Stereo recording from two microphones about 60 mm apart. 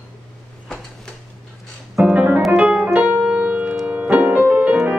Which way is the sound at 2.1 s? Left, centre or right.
Right.